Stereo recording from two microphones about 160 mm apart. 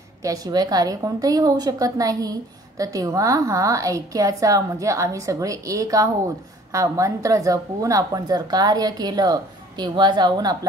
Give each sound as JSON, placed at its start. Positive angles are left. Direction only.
{"t": 0.2, "sound": "speech", "side_deg": -20}